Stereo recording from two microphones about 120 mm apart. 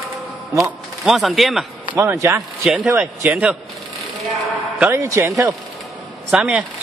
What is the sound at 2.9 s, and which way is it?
Speech, 10° right (ahead or behind).